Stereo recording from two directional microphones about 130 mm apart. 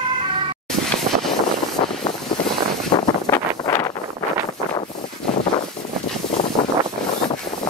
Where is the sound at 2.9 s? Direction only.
35° left (ahead or behind).